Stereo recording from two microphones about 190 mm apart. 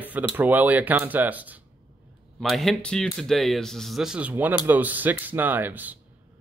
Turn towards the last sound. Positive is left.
turn(degrees=-10)  # may be behind; listen again after turning